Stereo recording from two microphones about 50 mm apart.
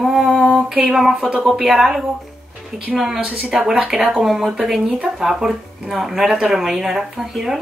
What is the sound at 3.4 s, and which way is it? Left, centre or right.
Speech, centre.